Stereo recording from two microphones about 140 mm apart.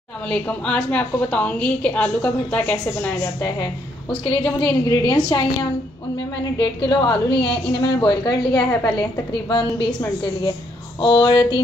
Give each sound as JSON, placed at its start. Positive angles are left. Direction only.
{"t": 0.3, "sound": "a woman's voice", "side_deg": 10}
{"t": 4.1, "sound": "a woman's voice", "side_deg": 40}
{"t": 11.0, "sound": "a woman's voice", "side_deg": 30}